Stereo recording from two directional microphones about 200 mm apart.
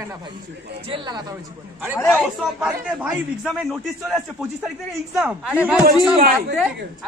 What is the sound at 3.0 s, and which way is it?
A man's voice, 5° right (ahead or behind).